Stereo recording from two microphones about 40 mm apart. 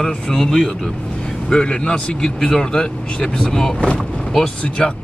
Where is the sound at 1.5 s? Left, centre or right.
Left.